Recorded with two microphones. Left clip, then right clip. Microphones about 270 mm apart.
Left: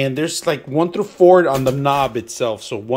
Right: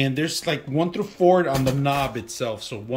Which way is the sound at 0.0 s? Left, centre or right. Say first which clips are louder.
Left 5 dB; centre.